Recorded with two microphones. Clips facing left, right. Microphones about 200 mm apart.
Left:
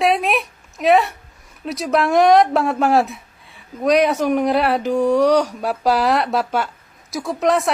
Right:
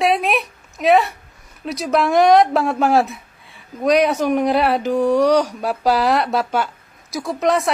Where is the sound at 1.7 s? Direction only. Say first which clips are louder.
Even; centre (ahead or behind).